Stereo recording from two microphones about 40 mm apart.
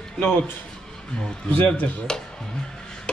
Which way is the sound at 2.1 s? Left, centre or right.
Centre.